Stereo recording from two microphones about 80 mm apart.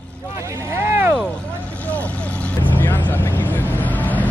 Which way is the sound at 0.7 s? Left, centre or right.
Right.